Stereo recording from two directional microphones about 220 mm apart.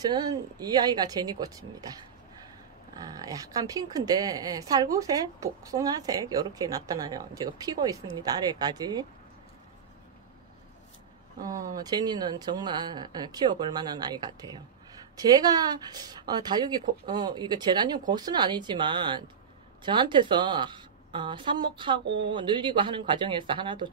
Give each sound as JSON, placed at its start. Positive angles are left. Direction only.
{"t": 0.0, "sound": "a woman's voice", "side_deg": -15}
{"t": 3.0, "sound": "a woman's voice", "side_deg": -15}
{"t": 11.3, "sound": "speech", "side_deg": -15}